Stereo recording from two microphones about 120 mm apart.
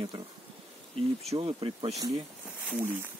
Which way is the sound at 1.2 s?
50° right (ahead or behind).